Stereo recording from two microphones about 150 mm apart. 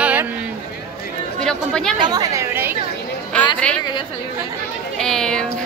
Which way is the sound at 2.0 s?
25° right (ahead or behind).